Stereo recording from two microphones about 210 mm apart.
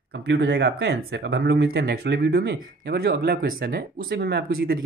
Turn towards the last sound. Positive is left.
turn(degrees=-45)  # may be behind; listen again after turning